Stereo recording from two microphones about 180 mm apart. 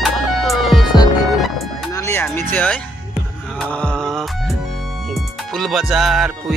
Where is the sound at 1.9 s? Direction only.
15° left (ahead or behind).